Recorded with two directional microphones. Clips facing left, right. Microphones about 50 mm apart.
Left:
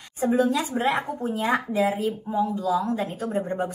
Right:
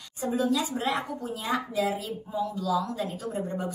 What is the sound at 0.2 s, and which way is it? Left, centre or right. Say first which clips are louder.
Speech: left 5 dB; left.